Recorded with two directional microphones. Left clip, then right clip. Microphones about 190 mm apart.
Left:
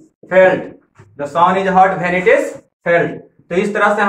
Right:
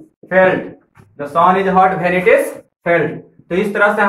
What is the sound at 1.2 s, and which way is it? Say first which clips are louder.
Speech: right 1 dB; centre (ahead or behind).